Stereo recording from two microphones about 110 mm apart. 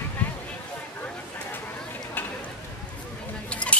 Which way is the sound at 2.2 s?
20° left (ahead or behind).